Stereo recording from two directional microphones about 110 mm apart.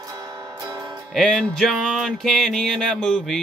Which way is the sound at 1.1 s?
5° left (ahead or behind).